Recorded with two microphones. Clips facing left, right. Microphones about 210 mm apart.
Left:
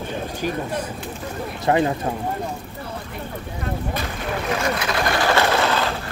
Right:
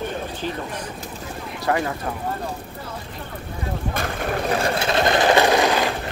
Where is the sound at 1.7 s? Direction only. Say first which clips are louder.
Left 4 dB; 25° left (ahead or behind).